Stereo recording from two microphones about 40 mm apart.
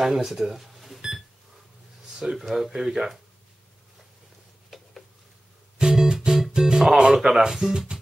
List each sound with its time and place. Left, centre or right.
0.0 s speech: centre
2.3 s speech: centre
4.6 s a sound: centre
5.8 s music: centre
6.1 s speech: centre